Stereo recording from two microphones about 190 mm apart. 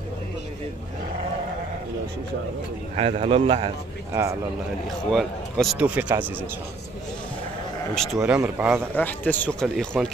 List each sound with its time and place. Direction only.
3.0 s a man's voice: 35° right (ahead or behind)
5.1 s speech: centre (ahead or behind)
7.9 s speech: centre (ahead or behind)
8.9 s speech: 10° left (ahead or behind)